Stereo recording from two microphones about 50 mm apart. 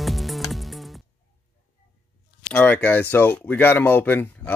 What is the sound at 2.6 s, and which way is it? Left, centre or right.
Speech, left.